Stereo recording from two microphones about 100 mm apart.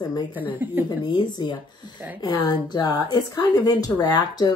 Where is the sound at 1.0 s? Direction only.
45° left (ahead or behind).